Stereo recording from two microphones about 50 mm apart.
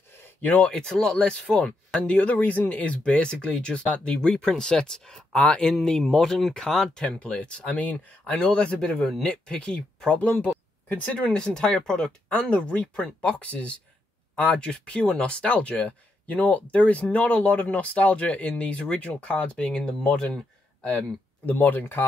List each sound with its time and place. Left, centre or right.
0.4 s speech: left
0.7 s speech: centre
2.0 s speech: left
11.1 s speech: centre
21.5 s speech: left